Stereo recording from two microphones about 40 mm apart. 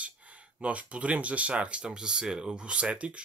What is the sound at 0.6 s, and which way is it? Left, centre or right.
Speech, right.